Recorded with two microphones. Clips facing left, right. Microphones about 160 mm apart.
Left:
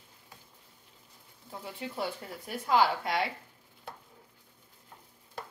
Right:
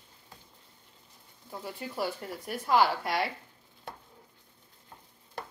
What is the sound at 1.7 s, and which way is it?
A woman's voice, 25° left (ahead or behind).